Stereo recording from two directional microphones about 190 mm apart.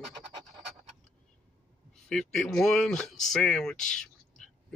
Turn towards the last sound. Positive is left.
turn(degrees=5)  # may be behind; listen again after turning